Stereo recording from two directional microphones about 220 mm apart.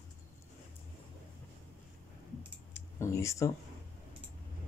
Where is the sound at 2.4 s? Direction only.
10° left (ahead or behind).